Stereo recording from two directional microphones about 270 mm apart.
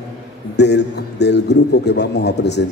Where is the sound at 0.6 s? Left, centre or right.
Left.